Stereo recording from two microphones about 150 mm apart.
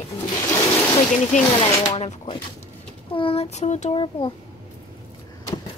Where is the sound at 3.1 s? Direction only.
35° left (ahead or behind).